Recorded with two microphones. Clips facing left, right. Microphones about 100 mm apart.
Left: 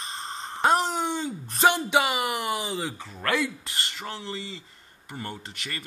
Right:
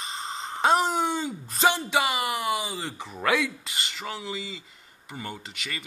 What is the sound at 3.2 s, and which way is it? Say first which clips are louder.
Speech: right 2 dB; 5° right (ahead or behind).